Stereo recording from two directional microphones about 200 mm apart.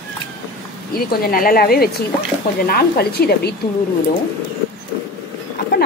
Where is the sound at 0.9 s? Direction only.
45° left (ahead or behind).